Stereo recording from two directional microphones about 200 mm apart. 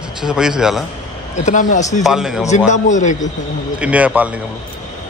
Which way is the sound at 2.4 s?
35° left (ahead or behind).